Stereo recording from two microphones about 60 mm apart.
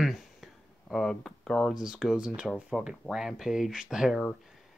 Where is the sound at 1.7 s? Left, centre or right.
Centre.